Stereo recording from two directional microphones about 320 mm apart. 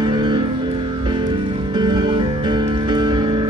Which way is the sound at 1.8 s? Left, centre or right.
Centre.